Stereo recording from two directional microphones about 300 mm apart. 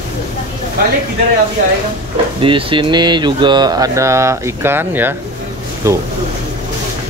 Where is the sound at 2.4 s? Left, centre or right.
Centre.